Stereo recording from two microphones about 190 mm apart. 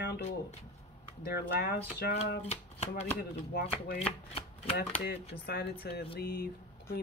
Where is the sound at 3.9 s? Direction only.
30° left (ahead or behind).